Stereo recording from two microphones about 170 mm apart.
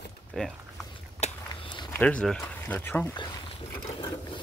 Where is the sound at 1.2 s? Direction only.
30° left (ahead or behind).